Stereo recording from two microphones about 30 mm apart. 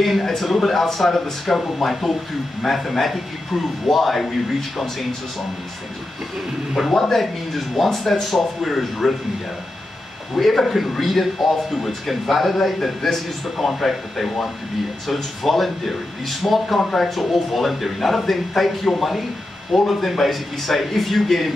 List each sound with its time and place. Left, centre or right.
0.0 s speech: centre
6.9 s speech: centre
10.3 s speech: centre